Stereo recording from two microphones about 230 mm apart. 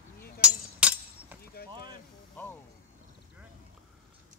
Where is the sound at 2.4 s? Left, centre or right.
Centre.